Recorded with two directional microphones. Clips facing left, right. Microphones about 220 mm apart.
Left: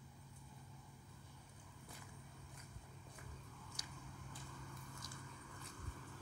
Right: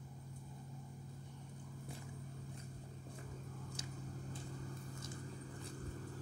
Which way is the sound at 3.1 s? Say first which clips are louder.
Right 7 dB; 40° right (ahead or behind).